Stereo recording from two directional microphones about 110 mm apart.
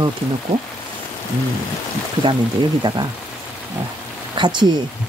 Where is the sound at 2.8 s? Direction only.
40° right (ahead or behind).